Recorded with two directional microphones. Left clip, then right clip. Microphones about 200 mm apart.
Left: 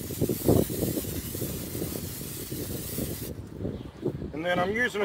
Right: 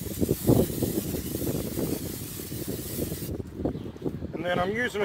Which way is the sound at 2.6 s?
Centre (ahead or behind).